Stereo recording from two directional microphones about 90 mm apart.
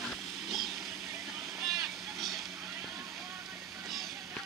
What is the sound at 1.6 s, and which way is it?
Vehicle, centre (ahead or behind).